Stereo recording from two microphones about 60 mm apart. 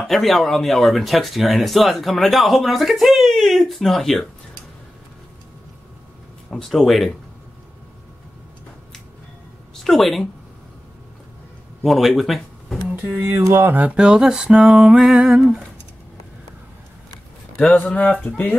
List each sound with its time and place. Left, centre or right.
0.0 s speech: centre
6.7 s speech: centre
9.8 s speech: centre
11.8 s speech: centre
12.9 s speech: right
13.2 s a sound: right
13.7 s speech: right
13.9 s music: centre
17.7 s speech: left